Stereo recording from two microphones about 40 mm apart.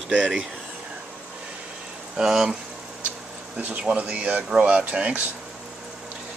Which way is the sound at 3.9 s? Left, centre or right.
Right.